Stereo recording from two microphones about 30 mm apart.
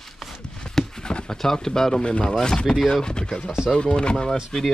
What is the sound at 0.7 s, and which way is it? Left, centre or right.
Horse, left.